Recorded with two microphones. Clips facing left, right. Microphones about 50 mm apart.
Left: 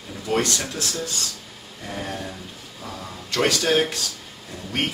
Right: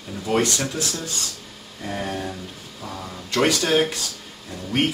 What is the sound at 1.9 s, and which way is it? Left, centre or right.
Speech, centre.